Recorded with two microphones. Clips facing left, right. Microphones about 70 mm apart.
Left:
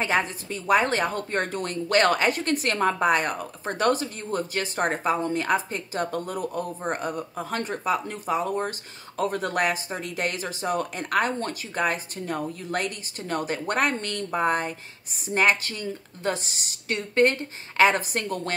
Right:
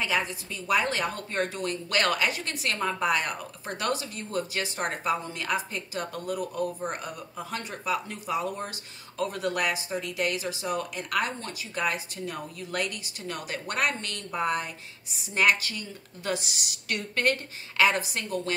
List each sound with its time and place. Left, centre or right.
0.0 s a woman's voice: left